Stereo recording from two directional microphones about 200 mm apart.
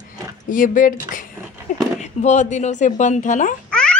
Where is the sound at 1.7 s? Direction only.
45° left (ahead or behind).